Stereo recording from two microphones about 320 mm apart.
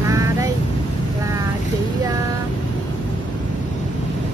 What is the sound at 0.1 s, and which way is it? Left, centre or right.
Vehicle, centre.